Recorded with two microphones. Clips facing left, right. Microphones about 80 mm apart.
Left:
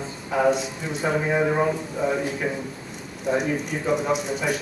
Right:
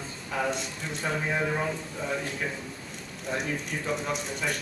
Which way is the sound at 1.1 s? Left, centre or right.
Centre.